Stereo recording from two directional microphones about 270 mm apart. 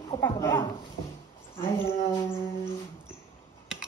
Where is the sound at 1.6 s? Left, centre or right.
Centre.